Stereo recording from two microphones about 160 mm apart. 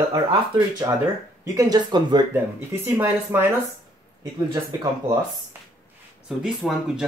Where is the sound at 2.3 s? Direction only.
15° right (ahead or behind).